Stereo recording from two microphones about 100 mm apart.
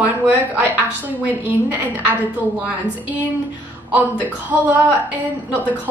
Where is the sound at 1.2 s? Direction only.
15° right (ahead or behind).